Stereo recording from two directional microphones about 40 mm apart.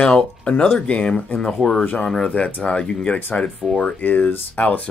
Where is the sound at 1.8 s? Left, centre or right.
Left.